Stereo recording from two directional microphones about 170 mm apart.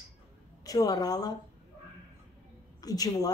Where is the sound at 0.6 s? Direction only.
20° left (ahead or behind).